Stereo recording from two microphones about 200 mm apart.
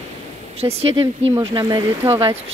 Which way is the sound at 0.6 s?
15° right (ahead or behind).